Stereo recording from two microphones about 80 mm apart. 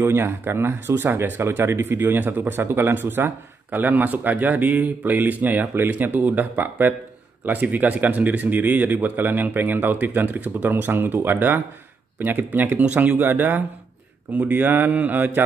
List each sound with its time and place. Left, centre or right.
0.0 s speech: right